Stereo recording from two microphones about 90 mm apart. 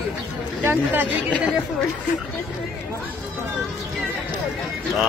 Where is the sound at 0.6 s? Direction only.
20° right (ahead or behind).